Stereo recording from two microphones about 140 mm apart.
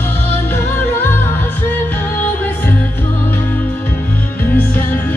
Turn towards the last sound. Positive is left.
turn(degrees=15)  # may be behind; listen again after turning